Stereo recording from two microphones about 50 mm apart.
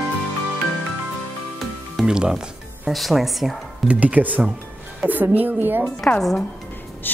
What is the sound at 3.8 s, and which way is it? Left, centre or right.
A woman's voice, right.